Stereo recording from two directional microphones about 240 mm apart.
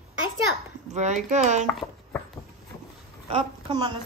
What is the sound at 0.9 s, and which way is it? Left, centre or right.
Speech, right.